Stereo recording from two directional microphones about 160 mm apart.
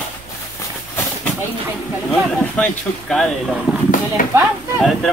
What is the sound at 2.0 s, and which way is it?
A woman's voice, centre (ahead or behind).